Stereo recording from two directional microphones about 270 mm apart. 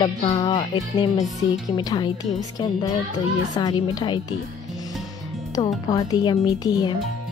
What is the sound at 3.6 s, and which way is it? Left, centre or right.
Speech, centre.